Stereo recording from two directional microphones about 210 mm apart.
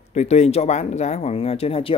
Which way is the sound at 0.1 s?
30° left (ahead or behind).